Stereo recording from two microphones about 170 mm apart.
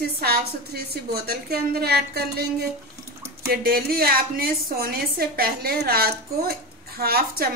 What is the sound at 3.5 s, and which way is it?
A woman's voice, 60° right (ahead or behind).